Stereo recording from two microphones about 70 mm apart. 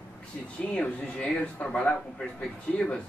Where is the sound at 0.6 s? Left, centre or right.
Centre.